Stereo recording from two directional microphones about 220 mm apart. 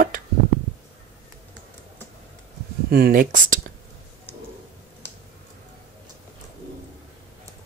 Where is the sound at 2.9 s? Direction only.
40° right (ahead or behind).